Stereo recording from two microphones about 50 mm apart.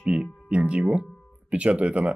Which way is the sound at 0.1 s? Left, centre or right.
Right.